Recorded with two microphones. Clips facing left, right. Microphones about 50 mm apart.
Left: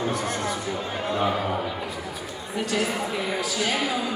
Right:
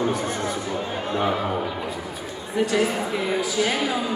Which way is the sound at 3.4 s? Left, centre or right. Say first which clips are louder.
Right 3 dB; right.